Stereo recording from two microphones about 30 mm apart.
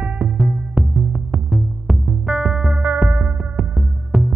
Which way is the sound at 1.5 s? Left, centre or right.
Centre.